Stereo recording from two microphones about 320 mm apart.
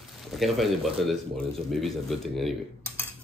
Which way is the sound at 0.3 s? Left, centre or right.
Centre.